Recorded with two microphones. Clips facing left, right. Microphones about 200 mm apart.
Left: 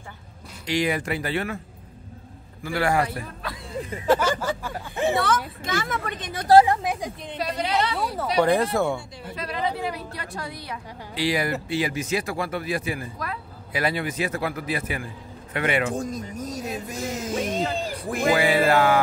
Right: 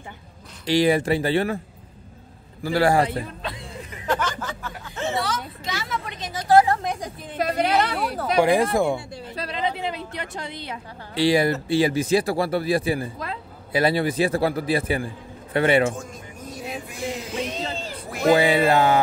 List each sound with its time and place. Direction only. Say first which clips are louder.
0.7 s speech: right 6 dB; 30° right (ahead or behind)
2.6 s a woman's voice: right 4 dB; 35° right (ahead or behind)
4.1 s speech: left 5 dB; 10° left (ahead or behind)
5.1 s speech: left 3 dB; 55° left (ahead or behind)
6.8 s a woman's voice: left 1 dB; 5° left (ahead or behind)
7.3 s a woman's voice: right 4 dB; 50° right (ahead or behind)
8.4 s speech: right 2 dB; 10° right (ahead or behind)
9.3 s speech: even; 30° right (ahead or behind)
9.6 s a woman's voice: right 1 dB; 20° right (ahead or behind)
16.0 s music: left 7 dB; 40° left (ahead or behind)
18.3 s a woman's voice: right 2 dB; 25° right (ahead or behind)